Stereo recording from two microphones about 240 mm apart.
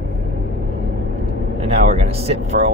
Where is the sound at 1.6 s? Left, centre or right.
Right.